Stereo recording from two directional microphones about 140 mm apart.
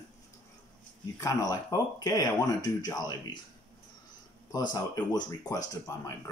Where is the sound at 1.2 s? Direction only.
25° left (ahead or behind).